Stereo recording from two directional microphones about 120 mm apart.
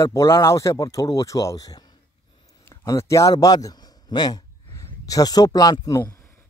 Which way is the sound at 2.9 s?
25° left (ahead or behind).